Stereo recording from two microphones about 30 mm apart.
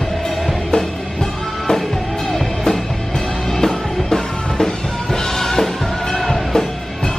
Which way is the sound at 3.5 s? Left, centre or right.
Centre.